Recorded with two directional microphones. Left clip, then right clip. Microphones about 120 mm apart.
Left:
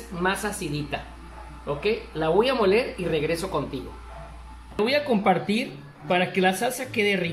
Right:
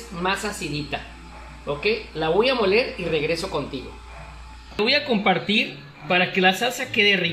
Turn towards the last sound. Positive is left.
turn(degrees=-15)  # may be behind; listen again after turning